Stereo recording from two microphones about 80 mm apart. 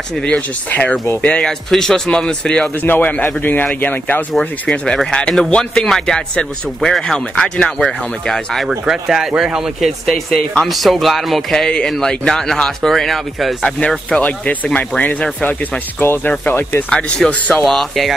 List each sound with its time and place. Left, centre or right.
0.1 s speech: centre
4.3 s speech: centre
8.6 s speech: centre
13.7 s speech: centre
16.9 s speech: centre